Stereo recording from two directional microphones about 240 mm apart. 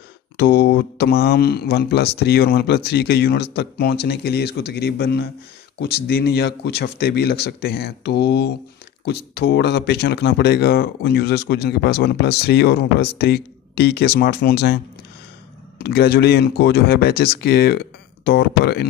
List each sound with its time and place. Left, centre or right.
0.4 s speech: left
15.8 s speech: left